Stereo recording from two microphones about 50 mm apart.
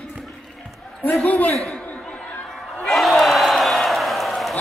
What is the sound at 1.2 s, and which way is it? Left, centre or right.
Speech, left.